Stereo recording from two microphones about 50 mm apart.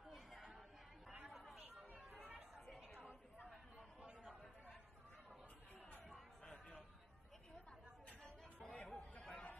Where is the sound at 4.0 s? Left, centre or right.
Right.